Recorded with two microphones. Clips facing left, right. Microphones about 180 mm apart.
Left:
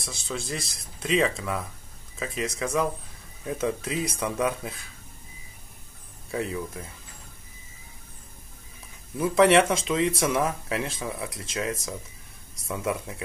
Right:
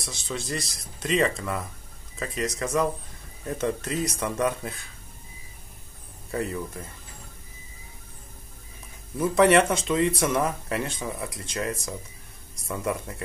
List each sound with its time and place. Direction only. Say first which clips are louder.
0.0 s speech: even; centre (ahead or behind)
6.3 s speech: even; centre (ahead or behind)
9.1 s speech: even; centre (ahead or behind)